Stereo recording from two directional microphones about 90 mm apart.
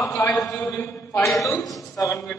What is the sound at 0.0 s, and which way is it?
A man's voice, 30° left (ahead or behind).